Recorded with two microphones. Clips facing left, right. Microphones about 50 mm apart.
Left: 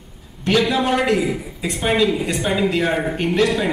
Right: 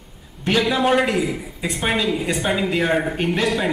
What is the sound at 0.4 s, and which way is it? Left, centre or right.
A man's voice, centre.